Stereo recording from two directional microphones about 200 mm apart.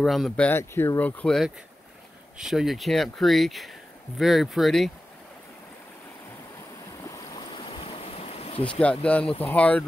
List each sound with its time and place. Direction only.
0.0 s speech: centre (ahead or behind)
0.5 s speech: 10° left (ahead or behind)
7.0 s boat: 20° left (ahead or behind)
8.6 s speech: 5° left (ahead or behind)